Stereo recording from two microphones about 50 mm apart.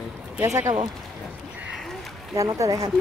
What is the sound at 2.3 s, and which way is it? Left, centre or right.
Speech, right.